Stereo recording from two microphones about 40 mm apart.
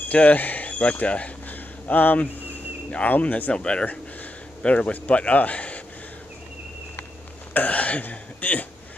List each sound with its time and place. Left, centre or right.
0.1 s speech: left
1.0 s speech: left
1.5 s a sound: left
3.1 s speech: left
3.5 s speech: left
3.8 s a man's voice: left
7.5 s speech: left